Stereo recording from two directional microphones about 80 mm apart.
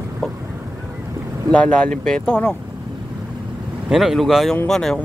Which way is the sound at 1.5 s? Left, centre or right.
Centre.